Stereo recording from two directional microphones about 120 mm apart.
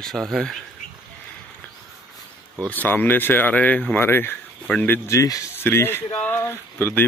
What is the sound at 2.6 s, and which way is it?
Speech, 15° left (ahead or behind).